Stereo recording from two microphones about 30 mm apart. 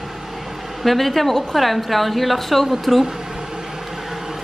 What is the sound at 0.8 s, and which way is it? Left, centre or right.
A woman's voice, centre.